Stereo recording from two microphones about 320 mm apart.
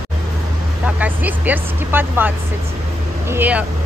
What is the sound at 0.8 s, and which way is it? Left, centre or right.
Speech, centre.